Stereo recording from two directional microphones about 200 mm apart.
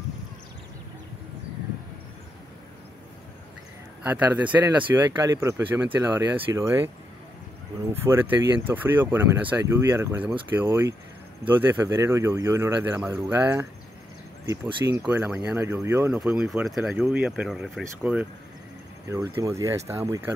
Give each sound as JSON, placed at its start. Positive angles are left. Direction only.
{"t": 4.0, "sound": "speech", "side_deg": -10}
{"t": 7.9, "sound": "speech", "side_deg": -10}
{"t": 14.4, "sound": "speech", "side_deg": -20}
{"t": 15.0, "sound": "speech", "side_deg": -10}
{"t": 19.0, "sound": "speech", "side_deg": -15}